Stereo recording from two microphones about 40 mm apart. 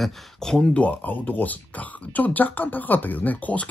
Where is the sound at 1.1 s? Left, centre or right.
Left.